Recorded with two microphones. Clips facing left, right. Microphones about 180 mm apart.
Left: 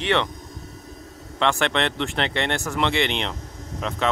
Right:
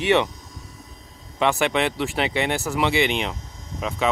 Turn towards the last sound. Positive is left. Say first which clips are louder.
# even
turn(degrees=-5)  # may be behind; listen again after turning